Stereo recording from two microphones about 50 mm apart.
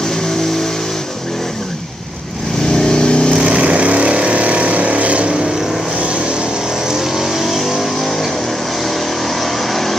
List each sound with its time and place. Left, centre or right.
2.7 s vehicle: centre
3.3 s vehicle: right
6.9 s vehicle: centre
9.4 s vehicle: centre